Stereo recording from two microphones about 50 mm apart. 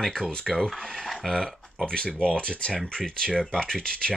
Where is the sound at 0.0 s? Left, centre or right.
Centre.